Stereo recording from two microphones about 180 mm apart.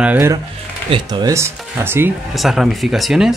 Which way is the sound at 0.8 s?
30° right (ahead or behind).